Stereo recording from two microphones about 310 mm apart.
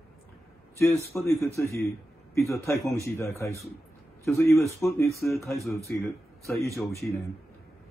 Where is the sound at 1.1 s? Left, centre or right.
Centre.